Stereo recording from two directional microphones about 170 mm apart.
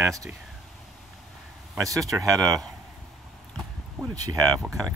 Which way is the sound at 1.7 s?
20° right (ahead or behind).